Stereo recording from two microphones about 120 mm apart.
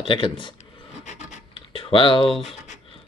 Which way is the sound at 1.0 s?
80° left.